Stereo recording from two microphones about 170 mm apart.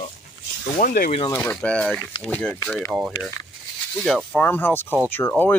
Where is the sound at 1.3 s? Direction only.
10° left (ahead or behind).